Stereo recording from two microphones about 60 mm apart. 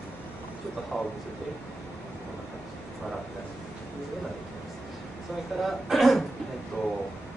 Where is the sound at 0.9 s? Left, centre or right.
Centre.